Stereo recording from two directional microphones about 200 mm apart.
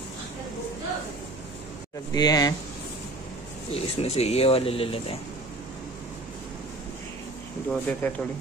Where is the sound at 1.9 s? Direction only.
20° left (ahead or behind).